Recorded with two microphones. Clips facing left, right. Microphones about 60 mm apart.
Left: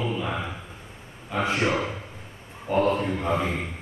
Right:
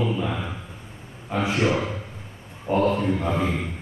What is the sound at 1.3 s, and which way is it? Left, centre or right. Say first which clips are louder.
Speech: right 1 dB; centre.